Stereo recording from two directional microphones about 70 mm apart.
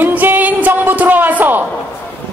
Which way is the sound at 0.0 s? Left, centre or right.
Right.